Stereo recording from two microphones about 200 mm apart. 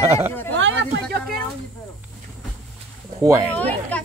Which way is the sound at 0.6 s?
70° right (ahead or behind).